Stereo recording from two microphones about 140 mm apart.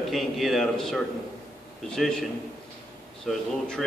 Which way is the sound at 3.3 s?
5° left (ahead or behind).